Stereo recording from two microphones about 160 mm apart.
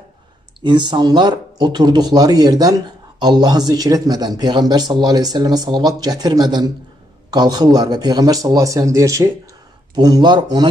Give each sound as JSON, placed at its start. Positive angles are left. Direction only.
{"t": 0.6, "sound": "speech", "side_deg": -30}